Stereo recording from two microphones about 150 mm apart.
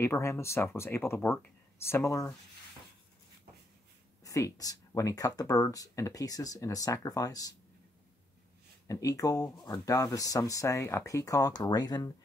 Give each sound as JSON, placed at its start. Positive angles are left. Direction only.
{"t": 0.0, "sound": "speech", "side_deg": 15}
{"t": 4.2, "sound": "speech", "side_deg": 20}
{"t": 8.8, "sound": "speech", "side_deg": 20}